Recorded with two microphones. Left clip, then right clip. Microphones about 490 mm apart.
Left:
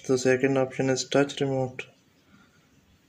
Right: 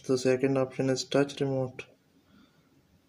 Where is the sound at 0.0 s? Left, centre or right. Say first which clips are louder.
Left 3 dB; right.